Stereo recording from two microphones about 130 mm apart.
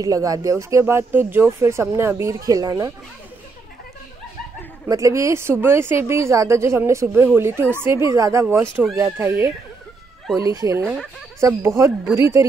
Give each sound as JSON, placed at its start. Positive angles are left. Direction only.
{"t": 0.0, "sound": "speech", "side_deg": -25}
{"t": 4.8, "sound": "speech", "side_deg": -25}
{"t": 11.0, "sound": "speech", "side_deg": 5}
{"t": 11.4, "sound": "speech", "side_deg": -20}